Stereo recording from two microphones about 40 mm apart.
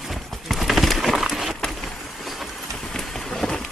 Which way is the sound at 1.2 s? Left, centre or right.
Centre.